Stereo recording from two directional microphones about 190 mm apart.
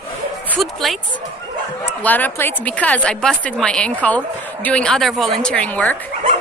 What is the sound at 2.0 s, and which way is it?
A woman's voice, 10° left (ahead or behind).